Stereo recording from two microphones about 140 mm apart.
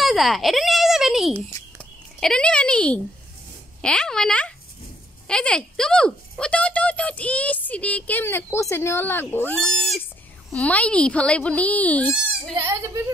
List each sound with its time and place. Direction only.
0.0 s a child's voice: centre (ahead or behind)
12.5 s speech: 20° right (ahead or behind)